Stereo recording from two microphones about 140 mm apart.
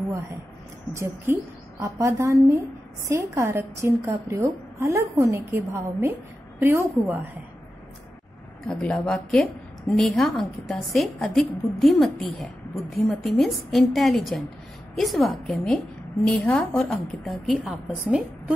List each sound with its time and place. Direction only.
0.9 s a woman's voice: 20° right (ahead or behind)
8.6 s a woman's voice: 5° left (ahead or behind)